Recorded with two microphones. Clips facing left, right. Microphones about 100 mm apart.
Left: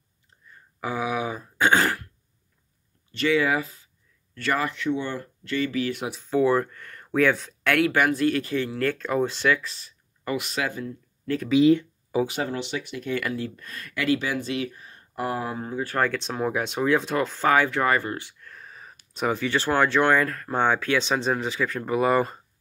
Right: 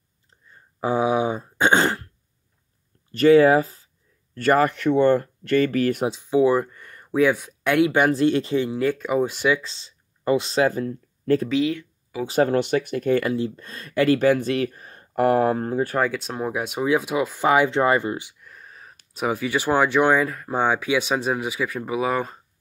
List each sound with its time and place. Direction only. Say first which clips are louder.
0.5 s speech: right 7 dB; 30° right (ahead or behind)
3.1 s speech: right 9 dB; 40° right (ahead or behind)
6.0 s speech: right 2 dB; 15° right (ahead or behind); by 11.4 s 40° right (ahead or behind)
11.6 s a sound: left 7 dB; 30° left (ahead or behind)
12.3 s speech: right 9 dB; 50° right (ahead or behind)
13.2 s speech: right 5 dB; 30° right (ahead or behind)
14.0 s speech: right 7 dB; 45° right (ahead or behind)
15.9 s speech: right 2 dB; 5° right (ahead or behind)
18.5 s a sound: even; centre (ahead or behind)
19.1 s speech: right 1 dB; 5° right (ahead or behind)